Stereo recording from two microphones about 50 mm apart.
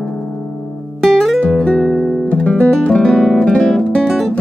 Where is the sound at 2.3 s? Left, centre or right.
Left.